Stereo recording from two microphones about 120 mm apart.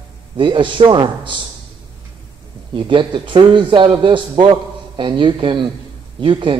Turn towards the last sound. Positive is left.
turn(degrees=-45)  # may be behind; listen again after turning